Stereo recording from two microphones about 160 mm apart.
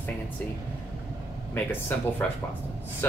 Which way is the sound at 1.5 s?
10° left (ahead or behind).